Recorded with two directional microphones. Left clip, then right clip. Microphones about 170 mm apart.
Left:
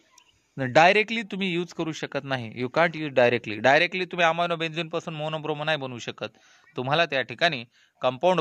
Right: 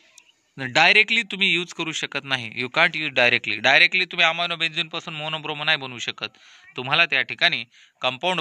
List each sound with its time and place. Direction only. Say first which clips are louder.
0.6 s speech: right 2 dB; 50° left (ahead or behind)
8.0 s speech: left 1 dB; 35° left (ahead or behind)